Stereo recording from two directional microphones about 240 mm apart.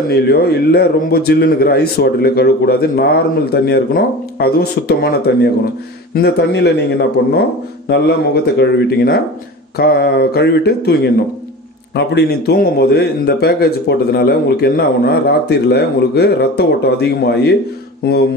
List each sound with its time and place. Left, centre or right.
0.1 s a man's voice: left